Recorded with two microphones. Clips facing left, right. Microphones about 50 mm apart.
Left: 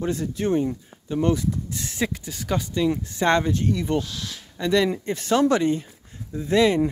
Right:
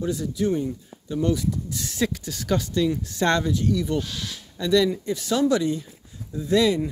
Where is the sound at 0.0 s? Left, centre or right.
Left.